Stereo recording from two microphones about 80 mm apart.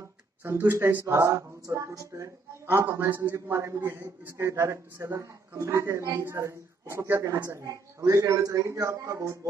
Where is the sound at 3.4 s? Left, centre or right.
Right.